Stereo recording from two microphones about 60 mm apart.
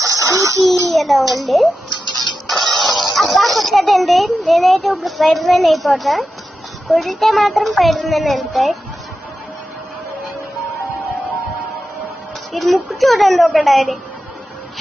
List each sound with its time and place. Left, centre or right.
0.0 s a sound: right
0.8 s a child's voice: centre
2.1 s music: centre
6.9 s a child's voice: centre
12.5 s a child's voice: centre